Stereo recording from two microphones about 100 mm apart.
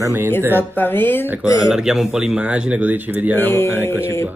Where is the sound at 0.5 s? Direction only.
20° left (ahead or behind).